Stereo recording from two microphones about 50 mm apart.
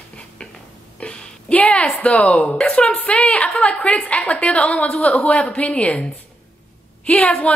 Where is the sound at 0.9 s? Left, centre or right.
Left.